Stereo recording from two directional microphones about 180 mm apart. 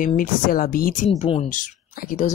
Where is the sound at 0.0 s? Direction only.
50° left (ahead or behind).